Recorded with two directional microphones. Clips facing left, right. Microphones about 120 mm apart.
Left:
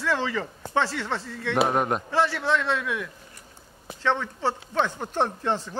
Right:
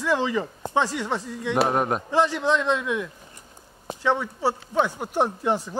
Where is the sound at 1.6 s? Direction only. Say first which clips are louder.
Right 1 dB; centre (ahead or behind).